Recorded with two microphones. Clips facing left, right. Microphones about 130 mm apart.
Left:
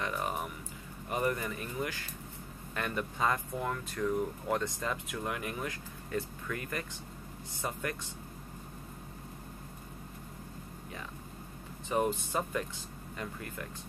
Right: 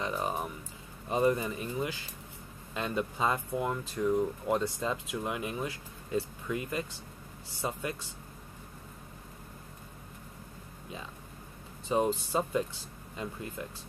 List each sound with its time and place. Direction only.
0.0 s a sound: 25° right (ahead or behind)
1.0 s speech: 25° right (ahead or behind)
11.9 s speech: 25° right (ahead or behind)